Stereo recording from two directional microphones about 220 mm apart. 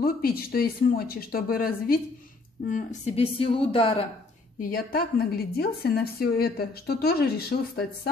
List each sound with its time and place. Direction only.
0.0 s a woman's voice: 40° left (ahead or behind)
2.7 s speech: 30° left (ahead or behind)
4.6 s a woman's voice: 40° left (ahead or behind)